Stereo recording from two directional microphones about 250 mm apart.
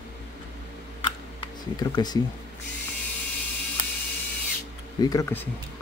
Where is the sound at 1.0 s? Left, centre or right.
Centre.